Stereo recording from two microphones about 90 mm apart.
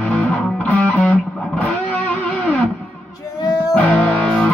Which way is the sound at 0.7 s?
15° left (ahead or behind).